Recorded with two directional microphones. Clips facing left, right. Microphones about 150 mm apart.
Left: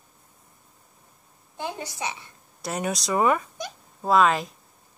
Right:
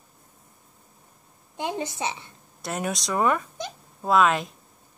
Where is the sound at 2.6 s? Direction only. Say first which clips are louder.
Left 1 dB; centre (ahead or behind).